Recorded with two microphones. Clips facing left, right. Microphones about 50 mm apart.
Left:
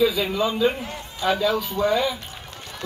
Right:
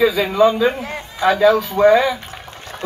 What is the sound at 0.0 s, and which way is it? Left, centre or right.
A man's voice, right.